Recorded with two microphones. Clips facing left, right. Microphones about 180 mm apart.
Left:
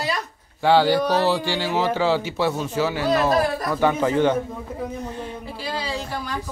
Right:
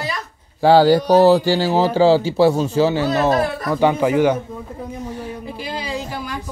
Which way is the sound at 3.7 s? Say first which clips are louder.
Right 5 dB; 15° right (ahead or behind).